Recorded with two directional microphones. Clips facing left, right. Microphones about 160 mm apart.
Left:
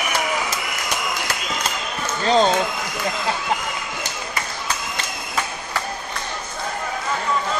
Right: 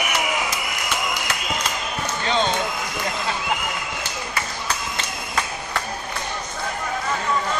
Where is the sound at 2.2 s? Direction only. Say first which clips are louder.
Left 6 dB; 35° left (ahead or behind).